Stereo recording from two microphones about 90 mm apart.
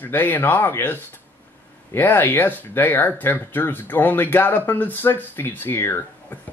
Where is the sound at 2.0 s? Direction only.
20° left (ahead or behind).